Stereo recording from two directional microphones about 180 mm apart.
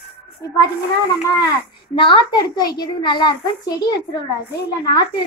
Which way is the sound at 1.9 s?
30° left (ahead or behind).